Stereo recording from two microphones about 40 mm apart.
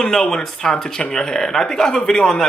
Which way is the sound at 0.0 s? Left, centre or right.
Centre.